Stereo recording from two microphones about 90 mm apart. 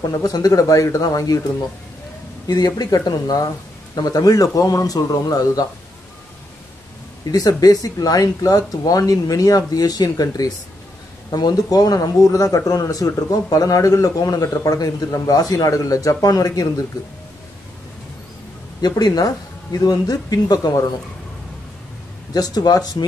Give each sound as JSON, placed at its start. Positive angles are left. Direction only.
{"t": 0.1, "sound": "speech", "side_deg": 45}
{"t": 2.4, "sound": "speech", "side_deg": 45}
{"t": 7.2, "sound": "speech", "side_deg": 45}
{"t": 18.8, "sound": "speech", "side_deg": 50}
{"t": 22.3, "sound": "speech", "side_deg": 45}